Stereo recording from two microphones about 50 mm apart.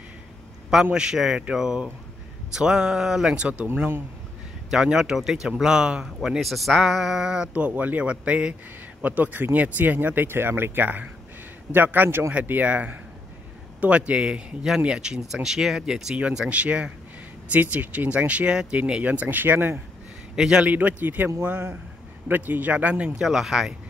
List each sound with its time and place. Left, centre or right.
0.9 s speech: centre
3.3 s speech: right
3.7 s speech: right
4.8 s speech: centre
7.5 s speech: right
9.0 s speech: right; by 16.2 s centre
16.4 s speech: right
19.2 s speech: right
20.3 s speech: centre
20.6 s speech: right
23.2 s speech: centre